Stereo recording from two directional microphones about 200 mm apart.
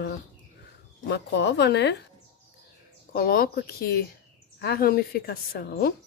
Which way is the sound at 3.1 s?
45° left (ahead or behind).